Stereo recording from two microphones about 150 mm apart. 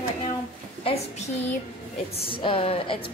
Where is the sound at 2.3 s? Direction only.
35° left (ahead or behind).